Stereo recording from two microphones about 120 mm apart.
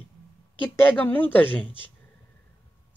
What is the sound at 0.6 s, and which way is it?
Speech, 15° left (ahead or behind).